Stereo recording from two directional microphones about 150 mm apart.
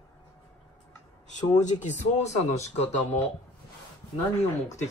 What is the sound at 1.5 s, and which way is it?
Speech, 50° left (ahead or behind).